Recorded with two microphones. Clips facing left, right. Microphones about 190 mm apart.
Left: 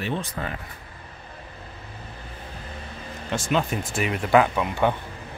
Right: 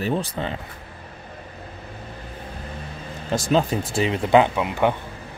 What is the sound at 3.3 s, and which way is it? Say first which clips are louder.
Speech: right 4 dB; 35° right (ahead or behind).